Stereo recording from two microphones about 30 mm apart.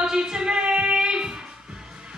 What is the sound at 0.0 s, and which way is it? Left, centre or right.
Music, right.